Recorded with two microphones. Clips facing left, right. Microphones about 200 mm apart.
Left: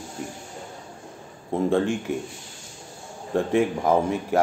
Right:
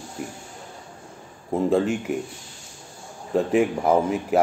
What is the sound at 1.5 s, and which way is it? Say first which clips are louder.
Speech: right 1 dB; 5° right (ahead or behind).